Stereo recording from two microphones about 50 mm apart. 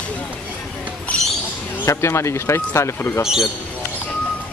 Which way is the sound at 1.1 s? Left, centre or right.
Left.